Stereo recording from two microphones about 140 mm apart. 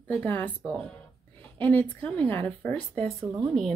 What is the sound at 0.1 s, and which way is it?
Speech, 15° left (ahead or behind).